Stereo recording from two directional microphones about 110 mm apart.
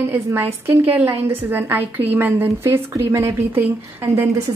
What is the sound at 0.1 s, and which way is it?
Speech, 20° right (ahead or behind).